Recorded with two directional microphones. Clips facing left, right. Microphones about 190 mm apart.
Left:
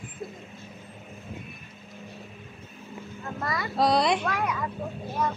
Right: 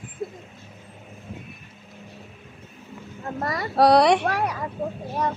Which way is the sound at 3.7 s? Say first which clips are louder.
Right 7 dB; 70° right (ahead or behind).